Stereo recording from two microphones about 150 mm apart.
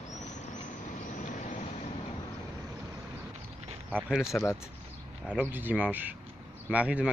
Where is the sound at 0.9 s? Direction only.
55° left (ahead or behind).